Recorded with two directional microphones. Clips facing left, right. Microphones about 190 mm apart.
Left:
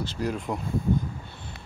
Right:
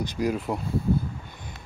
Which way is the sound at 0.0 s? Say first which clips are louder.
Right 3 dB; 15° right (ahead or behind).